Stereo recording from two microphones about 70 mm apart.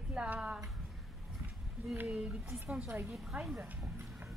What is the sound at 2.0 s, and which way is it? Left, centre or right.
Speech, centre.